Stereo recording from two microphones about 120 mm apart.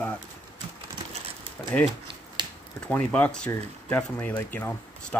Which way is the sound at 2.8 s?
10° left (ahead or behind).